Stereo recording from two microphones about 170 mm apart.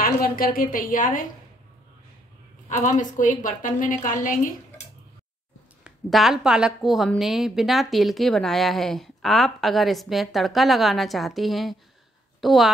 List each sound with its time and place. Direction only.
0.0 s a woman's voice: 60° left (ahead or behind)
2.8 s a woman's voice: 50° left (ahead or behind)
5.9 s a woman's voice: centre (ahead or behind)